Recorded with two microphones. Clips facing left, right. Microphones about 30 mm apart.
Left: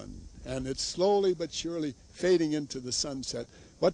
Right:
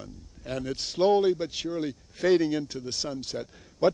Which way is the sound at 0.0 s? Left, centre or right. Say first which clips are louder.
Right 2 dB; centre.